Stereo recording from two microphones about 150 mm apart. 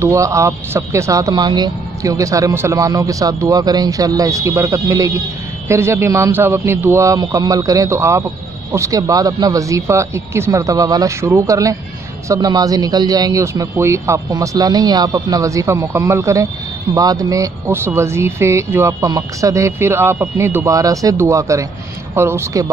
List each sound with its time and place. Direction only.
0.0 s a man's voice: 20° right (ahead or behind)